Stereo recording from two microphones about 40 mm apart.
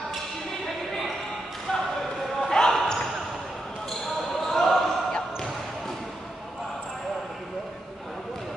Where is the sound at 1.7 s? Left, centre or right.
Centre.